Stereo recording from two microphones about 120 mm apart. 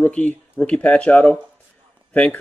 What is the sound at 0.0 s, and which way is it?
Speech, 10° left (ahead or behind).